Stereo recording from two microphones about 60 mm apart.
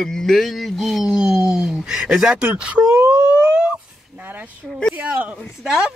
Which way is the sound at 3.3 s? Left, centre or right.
Centre.